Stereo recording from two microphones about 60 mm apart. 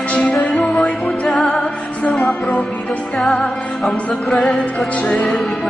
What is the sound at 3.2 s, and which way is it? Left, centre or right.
Music, centre.